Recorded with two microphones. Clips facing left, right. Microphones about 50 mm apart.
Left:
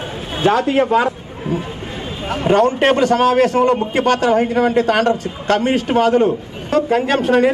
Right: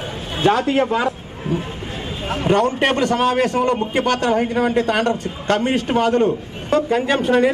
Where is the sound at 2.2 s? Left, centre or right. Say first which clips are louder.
Left 3 dB; centre.